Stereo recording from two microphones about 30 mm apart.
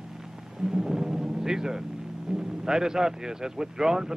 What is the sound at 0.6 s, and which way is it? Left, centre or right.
Timpani, centre.